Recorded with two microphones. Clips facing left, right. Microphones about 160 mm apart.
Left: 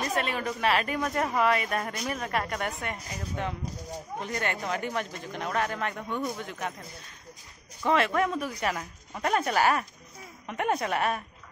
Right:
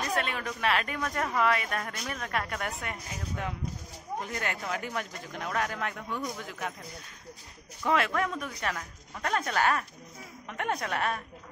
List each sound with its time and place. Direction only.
0.1 s a woman's voice: centre (ahead or behind)
1.0 s speech: 20° left (ahead or behind)
1.3 s a woman's voice: 5° left (ahead or behind)
7.8 s speech: centre (ahead or behind)